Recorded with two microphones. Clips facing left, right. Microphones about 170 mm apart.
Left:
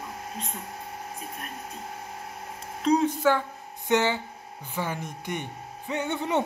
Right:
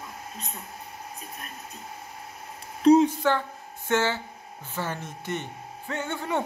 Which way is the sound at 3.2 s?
10° left (ahead or behind).